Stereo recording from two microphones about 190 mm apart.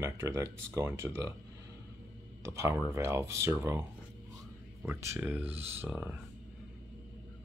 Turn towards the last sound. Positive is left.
turn(degrees=-10)  # may be behind; listen again after turning